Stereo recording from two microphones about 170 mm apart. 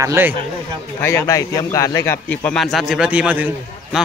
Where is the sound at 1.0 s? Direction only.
15° left (ahead or behind).